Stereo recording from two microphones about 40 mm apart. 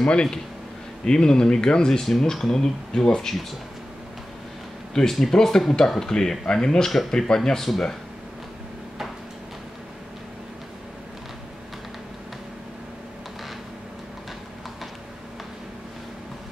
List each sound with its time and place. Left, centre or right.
0.0 s speech: left
5.0 s speech: centre